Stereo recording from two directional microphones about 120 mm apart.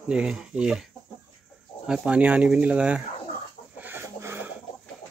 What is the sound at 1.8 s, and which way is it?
Speech, 5° right (ahead or behind).